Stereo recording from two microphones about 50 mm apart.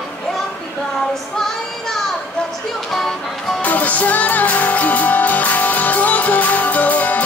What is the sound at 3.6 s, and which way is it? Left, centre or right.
Music, left.